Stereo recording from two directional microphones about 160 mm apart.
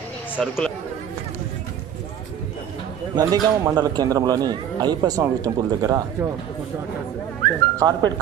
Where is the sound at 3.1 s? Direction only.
25° right (ahead or behind).